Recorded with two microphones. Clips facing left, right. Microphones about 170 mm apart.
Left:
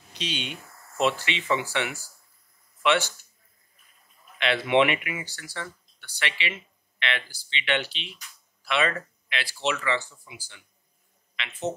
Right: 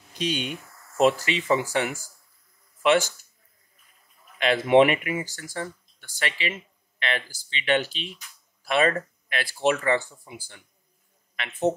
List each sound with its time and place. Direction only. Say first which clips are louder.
0.1 s speech: right 6 dB; 45° right (ahead or behind)
4.4 s speech: right 4 dB; 40° right (ahead or behind)